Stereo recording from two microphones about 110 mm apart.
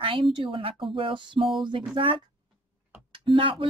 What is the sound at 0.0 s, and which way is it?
Speech, 50° right (ahead or behind).